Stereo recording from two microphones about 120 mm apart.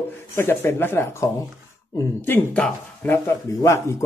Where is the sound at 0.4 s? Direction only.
20° left (ahead or behind).